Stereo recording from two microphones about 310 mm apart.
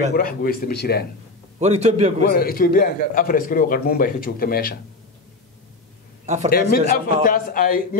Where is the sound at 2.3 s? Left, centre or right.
Left.